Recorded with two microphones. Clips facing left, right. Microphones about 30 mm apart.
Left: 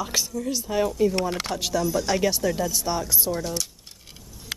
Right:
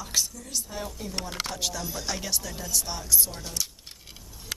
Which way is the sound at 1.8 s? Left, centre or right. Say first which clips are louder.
Left 11 dB; centre.